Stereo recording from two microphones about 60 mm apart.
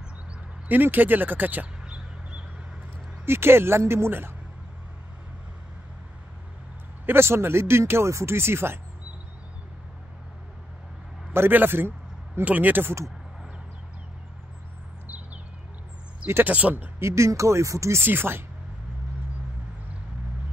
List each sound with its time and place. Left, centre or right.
0.7 s speech: right
3.3 s speech: right
7.1 s speech: right
11.3 s speech: right
16.4 s speech: right
17.0 s speech: right
18.0 s speech: right